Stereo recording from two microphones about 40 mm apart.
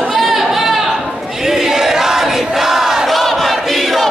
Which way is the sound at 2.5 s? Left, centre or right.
Centre.